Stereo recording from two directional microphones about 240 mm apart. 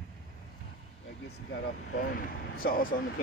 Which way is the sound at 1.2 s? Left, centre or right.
Left.